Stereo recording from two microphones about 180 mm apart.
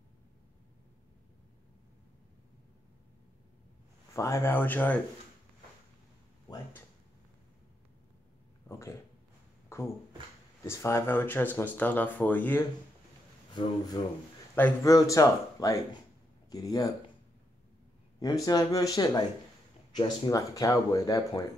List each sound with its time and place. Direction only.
4.1 s speech: 15° left (ahead or behind)
8.6 s a sound: 15° left (ahead or behind)
10.6 s speech: 15° left (ahead or behind)
14.0 s speech: 30° left (ahead or behind)
14.5 s speech: 15° left (ahead or behind)
18.2 s speech: 20° left (ahead or behind)